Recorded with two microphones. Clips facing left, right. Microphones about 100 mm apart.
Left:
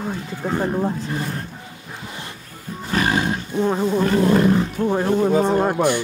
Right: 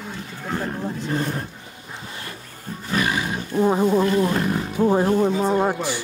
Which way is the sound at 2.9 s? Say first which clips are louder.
Left 3 dB; 30° left (ahead or behind).